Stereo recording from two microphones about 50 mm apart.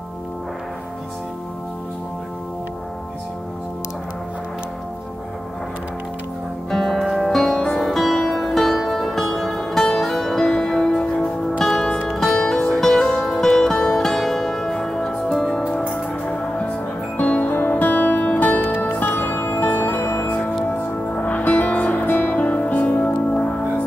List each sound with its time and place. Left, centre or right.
6.7 s music: centre
17.2 s music: left
17.5 s music: left
20.2 s music: left